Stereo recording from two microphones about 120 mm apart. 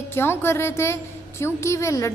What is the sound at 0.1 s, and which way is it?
A woman's voice, 20° left (ahead or behind).